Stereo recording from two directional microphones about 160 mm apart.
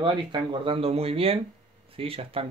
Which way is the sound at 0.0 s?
30° right (ahead or behind).